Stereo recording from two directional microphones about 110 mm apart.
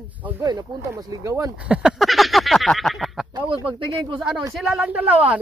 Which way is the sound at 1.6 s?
10° right (ahead or behind).